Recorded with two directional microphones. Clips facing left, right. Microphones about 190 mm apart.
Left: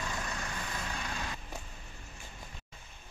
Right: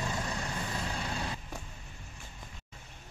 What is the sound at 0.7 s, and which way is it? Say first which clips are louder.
Vehicle: right 3 dB; 25° right (ahead or behind).